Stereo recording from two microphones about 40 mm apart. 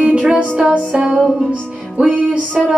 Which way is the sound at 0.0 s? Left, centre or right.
Right.